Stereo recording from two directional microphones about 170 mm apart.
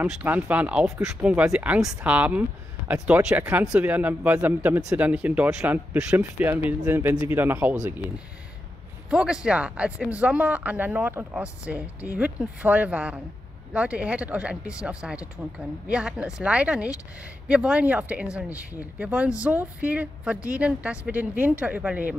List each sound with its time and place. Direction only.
0.0 s speech: 10° right (ahead or behind)
9.1 s speech: 5° right (ahead or behind)